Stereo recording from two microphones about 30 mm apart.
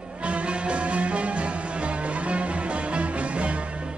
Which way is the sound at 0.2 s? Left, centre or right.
Right.